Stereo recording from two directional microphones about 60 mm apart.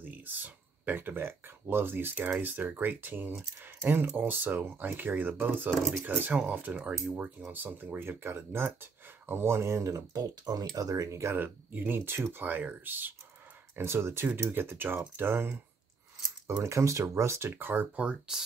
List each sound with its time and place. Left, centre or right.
0.0 s speech: right
7.5 s speech: right
8.2 s speech: right
11.3 s speech: right
13.7 s speech: right
16.6 s speech: right
17.5 s speech: right
18.3 s speech: centre